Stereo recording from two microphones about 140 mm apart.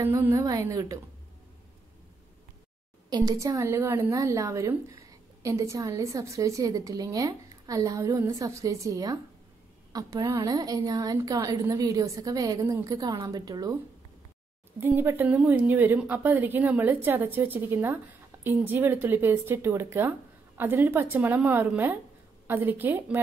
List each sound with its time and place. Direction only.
0.0 s a woman's voice: 20° right (ahead or behind)
3.1 s a woman's voice: 30° right (ahead or behind)
14.8 s a woman's voice: 15° right (ahead or behind)